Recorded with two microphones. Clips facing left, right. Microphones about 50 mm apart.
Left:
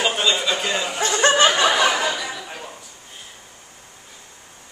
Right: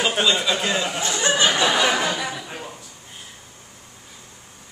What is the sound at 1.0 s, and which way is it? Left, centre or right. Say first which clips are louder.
Snicker: left 6 dB; left.